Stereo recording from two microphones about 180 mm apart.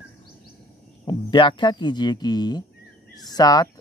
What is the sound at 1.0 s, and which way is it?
Speech, 25° left (ahead or behind).